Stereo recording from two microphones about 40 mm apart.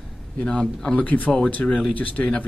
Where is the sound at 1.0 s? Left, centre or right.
Left.